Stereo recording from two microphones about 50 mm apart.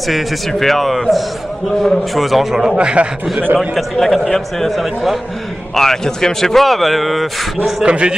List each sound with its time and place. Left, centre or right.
0.1 s speech: centre
2.7 s a man's voice: right
3.5 s speech: centre
7.8 s a man's voice: centre